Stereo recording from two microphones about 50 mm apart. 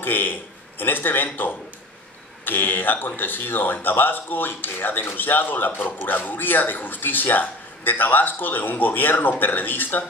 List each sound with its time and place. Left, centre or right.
0.0 s a man's voice: left